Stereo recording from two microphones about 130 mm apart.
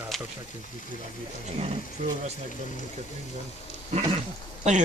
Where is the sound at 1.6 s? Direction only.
55° right (ahead or behind).